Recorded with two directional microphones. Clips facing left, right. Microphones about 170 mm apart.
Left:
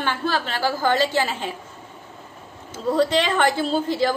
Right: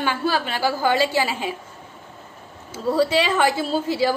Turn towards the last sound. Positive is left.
turn(degrees=-10)  # may be behind; listen again after turning